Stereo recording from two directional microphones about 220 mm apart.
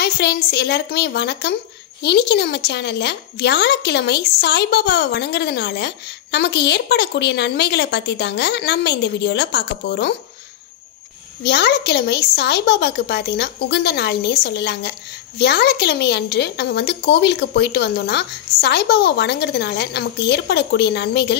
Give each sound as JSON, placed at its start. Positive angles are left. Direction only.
{"t": 0.0, "sound": "a woman's voice", "side_deg": 50}
{"t": 11.4, "sound": "a woman's voice", "side_deg": 50}